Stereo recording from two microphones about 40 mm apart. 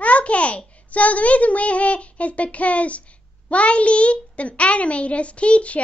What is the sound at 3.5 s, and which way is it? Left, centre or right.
A child's voice, left.